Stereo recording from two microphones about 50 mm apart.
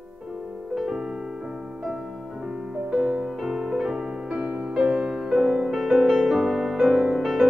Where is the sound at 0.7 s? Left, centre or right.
Centre.